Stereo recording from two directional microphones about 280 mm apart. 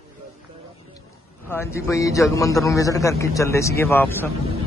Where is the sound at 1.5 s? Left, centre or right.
Centre.